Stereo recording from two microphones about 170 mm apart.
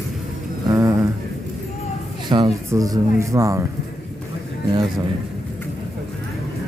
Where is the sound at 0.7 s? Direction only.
15° right (ahead or behind).